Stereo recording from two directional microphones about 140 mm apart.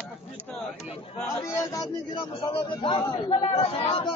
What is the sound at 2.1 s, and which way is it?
A man's voice, 35° left (ahead or behind).